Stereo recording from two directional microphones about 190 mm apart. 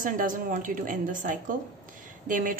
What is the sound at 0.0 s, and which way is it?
A woman's voice, 45° right (ahead or behind).